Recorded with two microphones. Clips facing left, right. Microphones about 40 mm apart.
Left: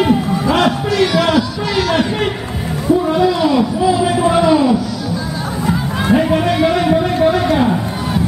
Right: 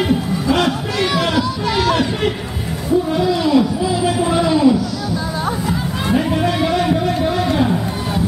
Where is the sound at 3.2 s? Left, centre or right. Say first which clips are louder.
Left 2 dB; left.